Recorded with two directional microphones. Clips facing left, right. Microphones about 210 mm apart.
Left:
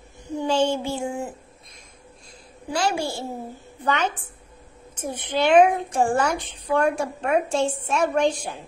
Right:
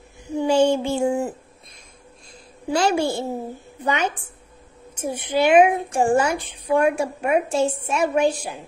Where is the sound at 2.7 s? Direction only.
20° right (ahead or behind).